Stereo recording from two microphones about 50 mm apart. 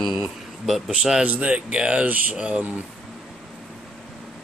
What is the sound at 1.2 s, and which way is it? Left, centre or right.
Speech, right.